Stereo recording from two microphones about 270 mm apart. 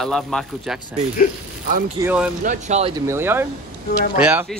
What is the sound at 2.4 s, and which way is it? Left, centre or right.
Speech, right.